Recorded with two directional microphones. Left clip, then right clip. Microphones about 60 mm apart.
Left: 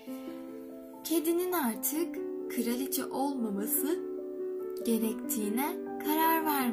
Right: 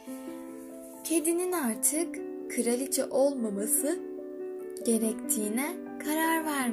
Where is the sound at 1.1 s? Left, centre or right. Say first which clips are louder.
Right 1 dB; right.